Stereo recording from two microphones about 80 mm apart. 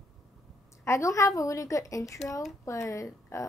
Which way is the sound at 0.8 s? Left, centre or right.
Left.